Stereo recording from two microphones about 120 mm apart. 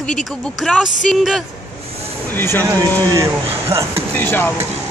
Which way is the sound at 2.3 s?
20° left (ahead or behind).